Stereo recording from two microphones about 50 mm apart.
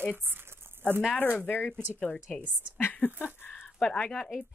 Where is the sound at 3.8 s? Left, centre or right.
Left.